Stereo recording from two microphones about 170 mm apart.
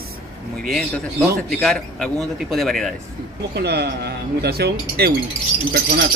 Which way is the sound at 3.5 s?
70° right (ahead or behind).